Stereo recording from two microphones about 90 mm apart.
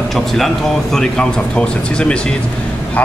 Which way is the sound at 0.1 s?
Centre (ahead or behind).